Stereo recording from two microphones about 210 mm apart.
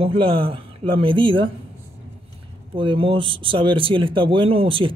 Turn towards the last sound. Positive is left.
turn(degrees=-25)  # may be behind; listen again after turning